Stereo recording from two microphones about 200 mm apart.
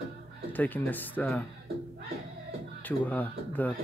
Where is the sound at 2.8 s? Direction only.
10° left (ahead or behind).